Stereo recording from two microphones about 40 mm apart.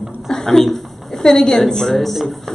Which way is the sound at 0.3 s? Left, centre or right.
Centre.